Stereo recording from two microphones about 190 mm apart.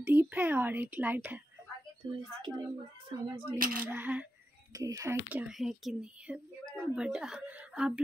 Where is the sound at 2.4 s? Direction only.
20° right (ahead or behind).